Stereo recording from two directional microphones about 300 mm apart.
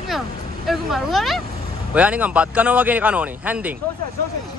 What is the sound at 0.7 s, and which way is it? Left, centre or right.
A man's voice, centre.